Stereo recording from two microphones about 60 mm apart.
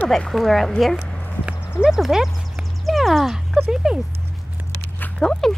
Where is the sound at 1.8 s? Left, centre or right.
Centre.